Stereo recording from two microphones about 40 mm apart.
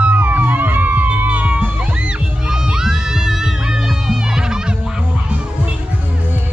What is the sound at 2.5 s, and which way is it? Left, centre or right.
Music, centre.